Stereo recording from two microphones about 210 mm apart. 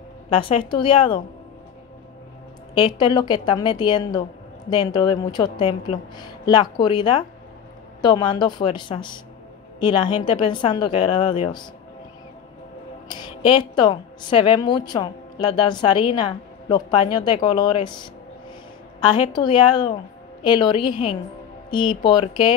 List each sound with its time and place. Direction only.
0.3 s a woman's voice: 25° left (ahead or behind)
2.7 s a woman's voice: 20° left (ahead or behind)
13.1 s a woman's voice: 20° left (ahead or behind)